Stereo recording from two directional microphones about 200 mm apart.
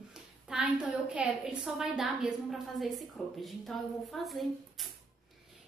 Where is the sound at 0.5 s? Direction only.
5° right (ahead or behind).